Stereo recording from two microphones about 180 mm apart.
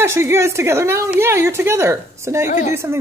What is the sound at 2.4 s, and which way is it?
Speech, 40° left (ahead or behind).